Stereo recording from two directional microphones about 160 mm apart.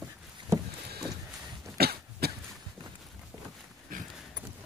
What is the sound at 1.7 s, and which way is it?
Cough, 80° right.